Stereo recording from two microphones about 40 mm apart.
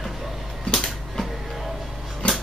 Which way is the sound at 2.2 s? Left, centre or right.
Left.